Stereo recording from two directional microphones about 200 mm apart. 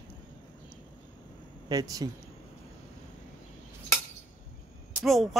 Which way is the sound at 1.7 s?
20° right (ahead or behind).